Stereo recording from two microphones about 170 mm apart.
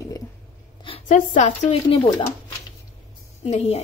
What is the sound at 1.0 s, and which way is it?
Speech, 50° left (ahead or behind).